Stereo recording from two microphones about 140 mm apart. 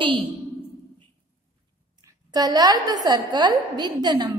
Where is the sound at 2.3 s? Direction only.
30° right (ahead or behind).